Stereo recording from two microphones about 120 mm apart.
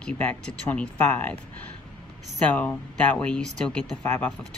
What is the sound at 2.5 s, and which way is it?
Speech, 10° left (ahead or behind).